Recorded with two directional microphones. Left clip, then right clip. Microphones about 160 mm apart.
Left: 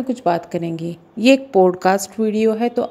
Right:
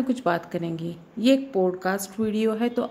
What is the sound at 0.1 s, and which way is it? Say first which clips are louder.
Speech: left 8 dB; 25° left (ahead or behind).